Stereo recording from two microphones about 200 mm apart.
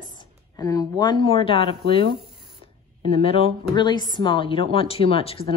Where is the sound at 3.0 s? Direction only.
30° left (ahead or behind).